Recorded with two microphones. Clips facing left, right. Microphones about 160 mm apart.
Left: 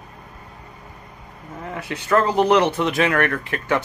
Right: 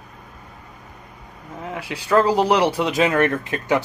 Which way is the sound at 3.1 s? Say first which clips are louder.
Right 2 dB; 20° right (ahead or behind).